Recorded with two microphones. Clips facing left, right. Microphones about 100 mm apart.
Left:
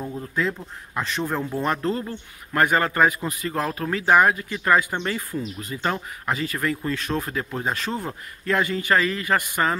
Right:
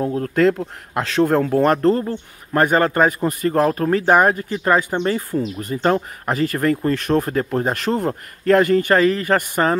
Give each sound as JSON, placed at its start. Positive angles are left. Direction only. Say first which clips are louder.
{"t": 0.0, "sound": "speech", "louder": "right 10 dB", "side_deg": -75}
{"t": 2.0, "sound": "speech", "louder": "right 8 dB", "side_deg": -35}
{"t": 5.6, "sound": "speech", "louder": "right 9 dB", "side_deg": -45}